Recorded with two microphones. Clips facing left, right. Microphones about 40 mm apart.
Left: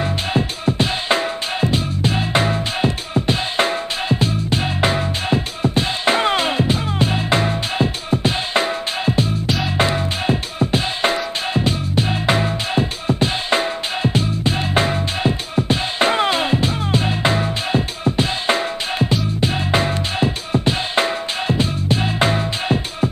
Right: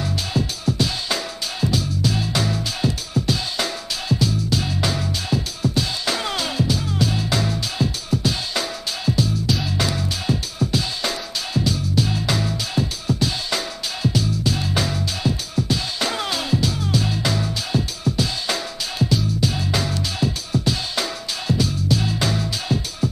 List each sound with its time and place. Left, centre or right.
0.0 s music: left